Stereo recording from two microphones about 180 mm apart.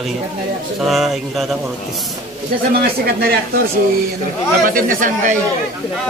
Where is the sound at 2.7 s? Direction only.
60° right (ahead or behind).